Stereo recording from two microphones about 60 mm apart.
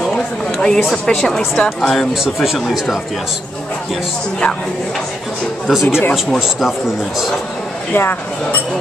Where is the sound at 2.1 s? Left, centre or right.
Centre.